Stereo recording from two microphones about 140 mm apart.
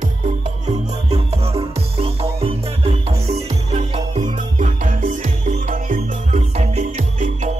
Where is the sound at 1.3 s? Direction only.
45° right (ahead or behind).